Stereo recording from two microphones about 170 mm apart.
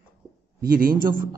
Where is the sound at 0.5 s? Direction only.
55° right (ahead or behind).